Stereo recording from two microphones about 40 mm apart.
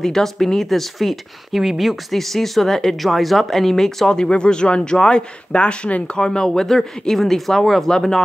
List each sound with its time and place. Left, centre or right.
0.0 s speech: centre
4.1 s speech: left
6.1 s speech: centre